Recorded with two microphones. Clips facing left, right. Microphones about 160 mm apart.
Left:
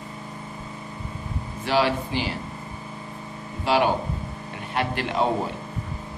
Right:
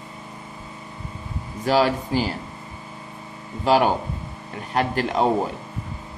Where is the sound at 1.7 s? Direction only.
40° right (ahead or behind).